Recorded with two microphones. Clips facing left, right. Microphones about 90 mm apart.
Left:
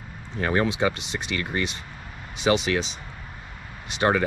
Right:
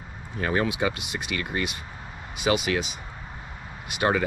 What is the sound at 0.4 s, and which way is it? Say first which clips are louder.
Speech: left 2 dB; 40° left (ahead or behind).